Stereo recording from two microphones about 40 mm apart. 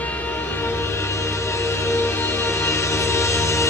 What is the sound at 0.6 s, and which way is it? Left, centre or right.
Music, left.